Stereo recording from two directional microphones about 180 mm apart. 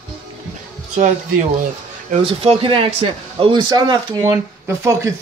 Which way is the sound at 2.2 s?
30° right (ahead or behind).